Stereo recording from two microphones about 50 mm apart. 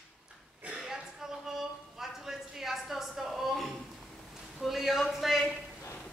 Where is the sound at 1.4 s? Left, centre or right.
Centre.